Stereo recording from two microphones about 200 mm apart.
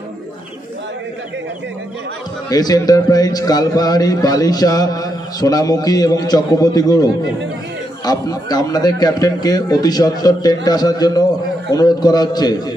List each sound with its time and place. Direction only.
2.5 s a man's voice: 20° left (ahead or behind)